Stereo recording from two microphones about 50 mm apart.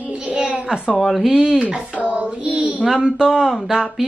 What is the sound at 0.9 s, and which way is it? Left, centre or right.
Speech, centre.